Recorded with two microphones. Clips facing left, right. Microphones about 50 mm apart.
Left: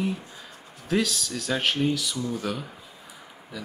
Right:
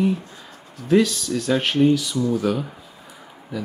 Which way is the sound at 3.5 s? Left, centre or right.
Centre.